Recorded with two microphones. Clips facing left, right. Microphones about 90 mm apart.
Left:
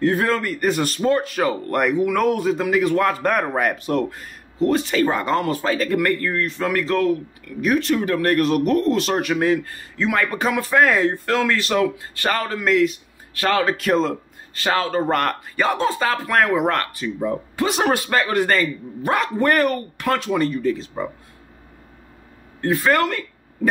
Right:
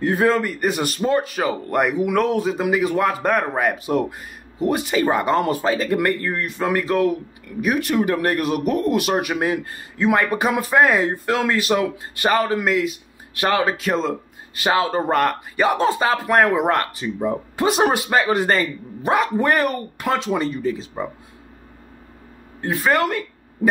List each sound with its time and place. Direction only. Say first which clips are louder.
0.0 s speech: right 1 dB; 5° right (ahead or behind)
13.3 s speech: even; 20° right (ahead or behind)
13.7 s speech: left 2 dB; centre (ahead or behind)
14.6 s speech: right 1 dB; 15° right (ahead or behind)
19.0 s speech: right 1 dB; 10° right (ahead or behind)
20.2 s speech: left 1 dB; 25° right (ahead or behind)
20.6 s speech: left 2 dB; 10° right (ahead or behind)
22.6 s speech: left 1 dB; 10° right (ahead or behind)